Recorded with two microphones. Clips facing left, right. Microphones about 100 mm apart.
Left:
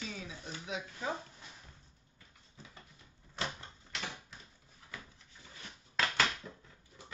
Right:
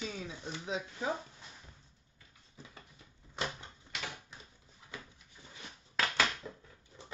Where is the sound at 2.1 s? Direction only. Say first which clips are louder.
Right 2 dB; 15° right (ahead or behind).